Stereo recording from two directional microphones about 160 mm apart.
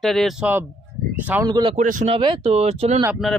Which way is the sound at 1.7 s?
55° right (ahead or behind).